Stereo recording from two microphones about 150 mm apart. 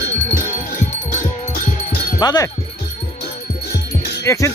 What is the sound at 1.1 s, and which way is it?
Music, 55° left (ahead or behind).